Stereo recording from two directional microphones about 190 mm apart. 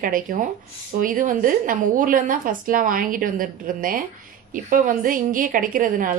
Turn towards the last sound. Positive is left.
turn(degrees=-45)  # may be behind; listen again after turning